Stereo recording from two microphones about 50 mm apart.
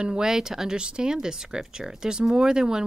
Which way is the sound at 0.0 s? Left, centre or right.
Centre.